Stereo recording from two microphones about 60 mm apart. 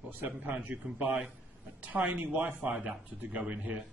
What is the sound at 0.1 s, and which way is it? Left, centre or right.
Speech, right.